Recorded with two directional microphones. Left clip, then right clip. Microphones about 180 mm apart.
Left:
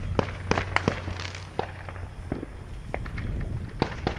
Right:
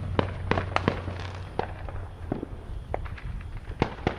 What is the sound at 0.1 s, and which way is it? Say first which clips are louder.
Fireworks: even; 65° left (ahead or behind).